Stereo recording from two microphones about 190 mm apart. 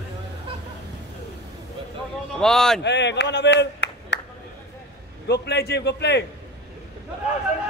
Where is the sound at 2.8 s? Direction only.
65° left (ahead or behind).